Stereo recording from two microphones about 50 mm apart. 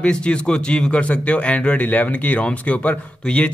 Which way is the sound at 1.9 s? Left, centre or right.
Left.